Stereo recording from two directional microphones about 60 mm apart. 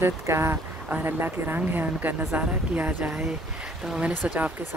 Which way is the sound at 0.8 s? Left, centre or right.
Right.